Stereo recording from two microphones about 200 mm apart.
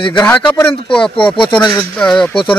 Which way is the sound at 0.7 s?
25° left (ahead or behind).